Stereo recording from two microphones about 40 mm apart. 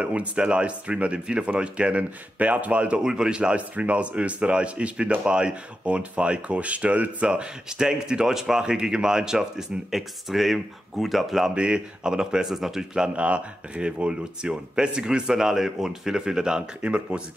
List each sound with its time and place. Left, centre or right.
0.0 s speech: right
3.0 s speech: centre
3.7 s speech: right
7.2 s speech: centre
11.5 s speech: right; by 12.8 s centre
13.1 s speech: right
15.2 s speech: centre; by 17.2 s right